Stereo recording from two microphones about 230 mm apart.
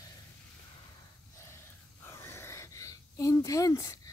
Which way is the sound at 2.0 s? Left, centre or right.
Centre.